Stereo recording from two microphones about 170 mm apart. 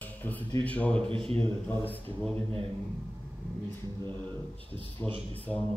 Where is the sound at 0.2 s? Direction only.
10° left (ahead or behind).